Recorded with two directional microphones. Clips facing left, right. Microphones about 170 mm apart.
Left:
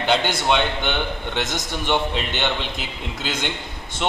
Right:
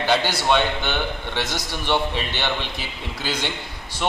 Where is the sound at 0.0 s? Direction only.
20° left (ahead or behind).